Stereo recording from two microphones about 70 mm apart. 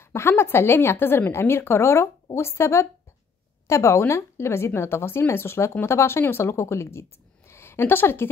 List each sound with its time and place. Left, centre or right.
0.0 s speech: left